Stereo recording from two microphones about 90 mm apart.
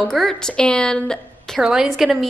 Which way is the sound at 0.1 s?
5° left (ahead or behind).